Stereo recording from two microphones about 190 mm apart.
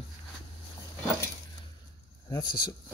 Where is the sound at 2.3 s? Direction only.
25° left (ahead or behind).